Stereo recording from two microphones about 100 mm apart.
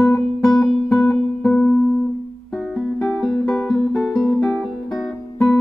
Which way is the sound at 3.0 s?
5° left (ahead or behind).